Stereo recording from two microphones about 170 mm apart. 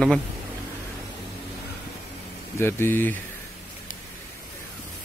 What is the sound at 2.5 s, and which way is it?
Speech, 15° left (ahead or behind).